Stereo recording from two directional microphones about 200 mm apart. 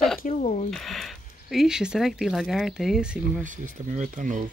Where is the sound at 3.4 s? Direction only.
40° right (ahead or behind).